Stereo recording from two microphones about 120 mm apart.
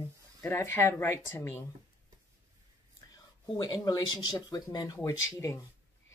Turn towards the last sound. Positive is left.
turn(degrees=25)  # may be behind; listen again after turning